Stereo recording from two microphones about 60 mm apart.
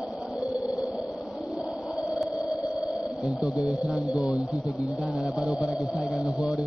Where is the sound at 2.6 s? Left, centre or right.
Left.